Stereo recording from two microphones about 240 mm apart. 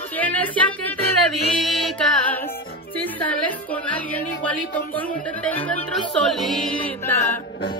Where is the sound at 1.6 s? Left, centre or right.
Centre.